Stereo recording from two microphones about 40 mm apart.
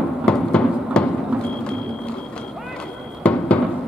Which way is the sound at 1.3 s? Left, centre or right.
Right.